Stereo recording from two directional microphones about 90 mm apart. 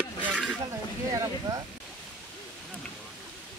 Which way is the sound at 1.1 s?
35° right (ahead or behind).